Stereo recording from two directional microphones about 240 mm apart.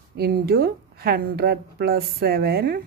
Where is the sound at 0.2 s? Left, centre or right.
Right.